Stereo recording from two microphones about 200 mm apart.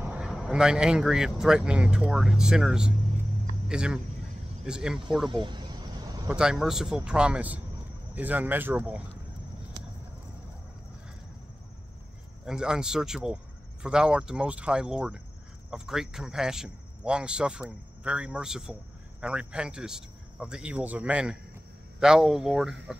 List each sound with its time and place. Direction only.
0.0 s speech: 5° right (ahead or behind)
5.3 s vehicle: 20° right (ahead or behind)
6.2 s speech: 5° right (ahead or behind)
12.4 s speech: 5° right (ahead or behind)